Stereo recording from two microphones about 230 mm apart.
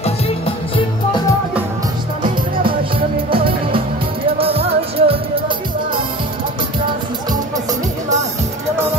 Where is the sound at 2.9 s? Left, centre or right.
Right.